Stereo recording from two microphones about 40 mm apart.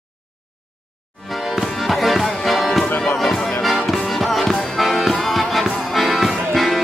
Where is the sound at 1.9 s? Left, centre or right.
Centre.